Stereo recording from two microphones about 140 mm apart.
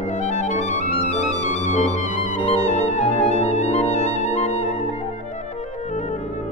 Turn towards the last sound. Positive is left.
turn(degrees=50)  # may be behind; listen again after turning